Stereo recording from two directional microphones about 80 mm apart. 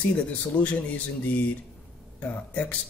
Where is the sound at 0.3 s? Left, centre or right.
Centre.